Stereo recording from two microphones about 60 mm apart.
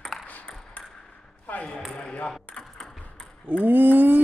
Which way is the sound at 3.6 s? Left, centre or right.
Right.